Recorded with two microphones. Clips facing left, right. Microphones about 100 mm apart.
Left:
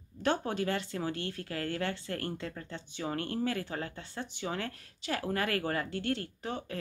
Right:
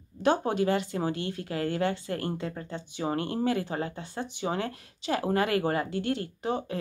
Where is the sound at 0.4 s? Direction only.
20° right (ahead or behind).